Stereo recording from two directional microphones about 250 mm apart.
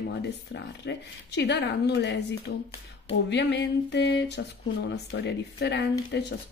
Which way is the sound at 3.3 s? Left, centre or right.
Left.